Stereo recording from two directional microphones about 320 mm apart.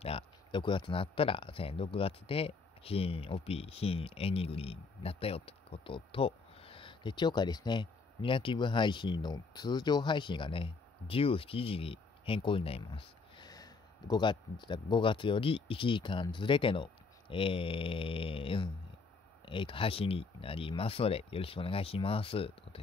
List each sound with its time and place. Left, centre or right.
0.0 s speech: centre